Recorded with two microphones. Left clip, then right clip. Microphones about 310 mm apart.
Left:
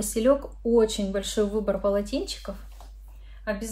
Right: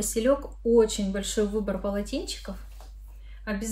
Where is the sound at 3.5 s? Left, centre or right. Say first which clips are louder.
Left 3 dB; centre.